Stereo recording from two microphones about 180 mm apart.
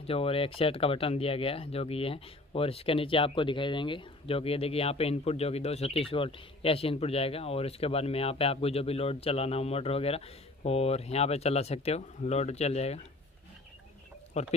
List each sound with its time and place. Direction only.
0.0 s speech: 30° left (ahead or behind)
14.3 s speech: 40° left (ahead or behind)